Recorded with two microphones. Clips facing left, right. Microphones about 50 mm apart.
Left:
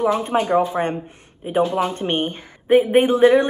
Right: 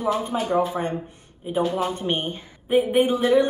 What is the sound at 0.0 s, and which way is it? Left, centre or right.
A woman's voice, left.